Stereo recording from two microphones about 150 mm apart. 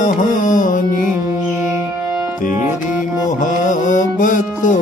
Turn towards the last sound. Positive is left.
turn(degrees=60)  # may be behind; listen again after turning